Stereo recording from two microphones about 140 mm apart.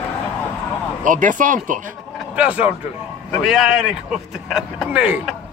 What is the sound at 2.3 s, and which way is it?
A man's voice, 10° right (ahead or behind).